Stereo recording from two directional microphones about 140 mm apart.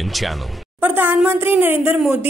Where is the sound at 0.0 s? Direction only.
Centre (ahead or behind).